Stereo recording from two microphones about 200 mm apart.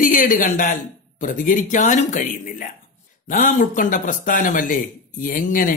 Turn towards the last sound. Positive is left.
turn(degrees=40)  # may be behind; listen again after turning